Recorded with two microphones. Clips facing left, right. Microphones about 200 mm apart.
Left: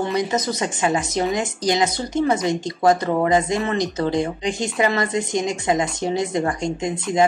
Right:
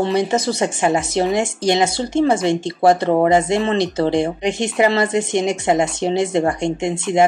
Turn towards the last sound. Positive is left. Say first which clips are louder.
# right 3 dB
turn(degrees=-25)  # may be behind; listen again after turning